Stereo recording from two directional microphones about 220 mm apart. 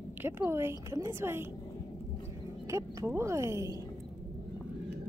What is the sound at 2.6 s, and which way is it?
Speech, 15° right (ahead or behind).